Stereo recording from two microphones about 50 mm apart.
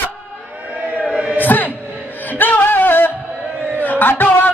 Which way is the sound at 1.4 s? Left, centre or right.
Left.